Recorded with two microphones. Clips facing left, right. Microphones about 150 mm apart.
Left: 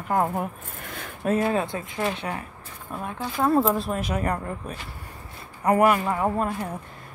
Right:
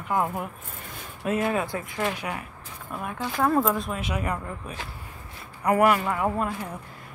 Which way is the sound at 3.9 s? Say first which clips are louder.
Left 3 dB; 40° left (ahead or behind).